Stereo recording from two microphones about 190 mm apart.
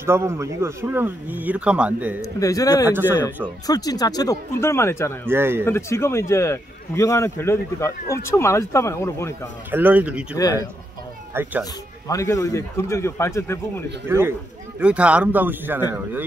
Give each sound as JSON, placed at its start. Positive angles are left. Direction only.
{"t": 0.0, "sound": "speech", "side_deg": -15}
{"t": 2.4, "sound": "speech", "side_deg": 20}
{"t": 2.9, "sound": "speech", "side_deg": -10}
{"t": 3.6, "sound": "speech", "side_deg": 20}
{"t": 5.3, "sound": "speech", "side_deg": -10}
{"t": 5.7, "sound": "speech", "side_deg": 15}
{"t": 9.7, "sound": "speech", "side_deg": -10}
{"t": 10.3, "sound": "speech", "side_deg": 15}
{"t": 11.3, "sound": "speech", "side_deg": -10}
{"t": 12.1, "sound": "speech", "side_deg": 15}
{"t": 14.0, "sound": "speech", "side_deg": -15}